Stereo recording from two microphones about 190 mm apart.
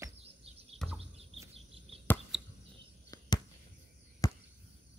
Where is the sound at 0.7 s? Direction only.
Centre (ahead or behind).